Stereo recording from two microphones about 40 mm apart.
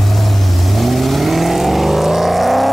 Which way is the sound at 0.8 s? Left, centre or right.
Centre.